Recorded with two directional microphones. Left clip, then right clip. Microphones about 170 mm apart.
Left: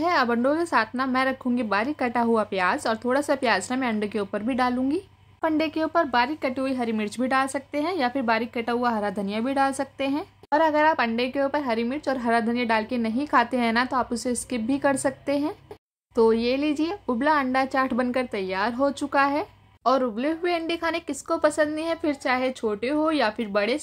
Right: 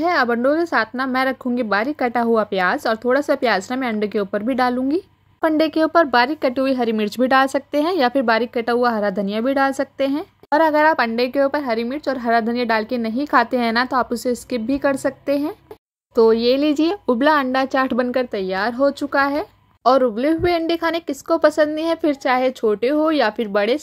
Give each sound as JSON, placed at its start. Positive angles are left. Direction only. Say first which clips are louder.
{"t": 0.0, "sound": "a woman's voice", "louder": "right 5 dB", "side_deg": -20}